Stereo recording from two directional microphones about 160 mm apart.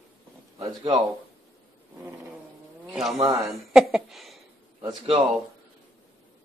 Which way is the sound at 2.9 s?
Centre (ahead or behind).